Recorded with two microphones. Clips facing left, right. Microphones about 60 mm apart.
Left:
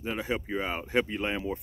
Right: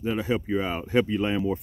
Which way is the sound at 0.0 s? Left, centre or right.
Centre.